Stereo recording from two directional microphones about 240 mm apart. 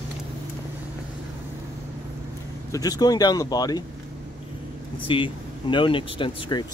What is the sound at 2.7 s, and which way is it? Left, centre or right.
Speech, centre.